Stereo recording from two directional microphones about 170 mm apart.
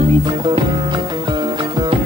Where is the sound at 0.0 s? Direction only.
25° right (ahead or behind).